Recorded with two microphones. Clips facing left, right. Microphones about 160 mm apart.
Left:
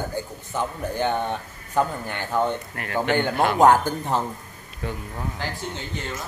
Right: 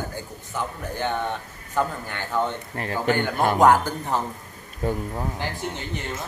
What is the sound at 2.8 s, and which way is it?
Speech, 35° right (ahead or behind).